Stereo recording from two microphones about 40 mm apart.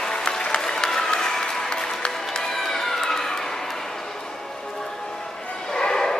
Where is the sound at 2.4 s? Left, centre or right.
Centre.